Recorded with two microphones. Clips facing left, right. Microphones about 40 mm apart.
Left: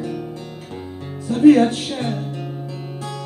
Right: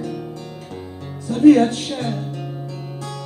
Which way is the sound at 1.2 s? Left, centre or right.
Centre.